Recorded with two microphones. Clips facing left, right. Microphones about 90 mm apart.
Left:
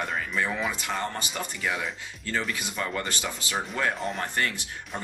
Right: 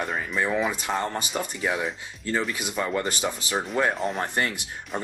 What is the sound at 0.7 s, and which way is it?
Speech, 20° right (ahead or behind).